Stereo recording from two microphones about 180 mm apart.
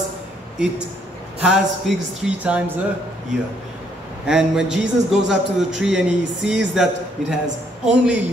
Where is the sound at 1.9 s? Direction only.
Centre (ahead or behind).